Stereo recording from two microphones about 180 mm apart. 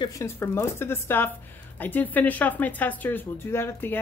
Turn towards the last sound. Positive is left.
turn(degrees=10)  # may be behind; listen again after turning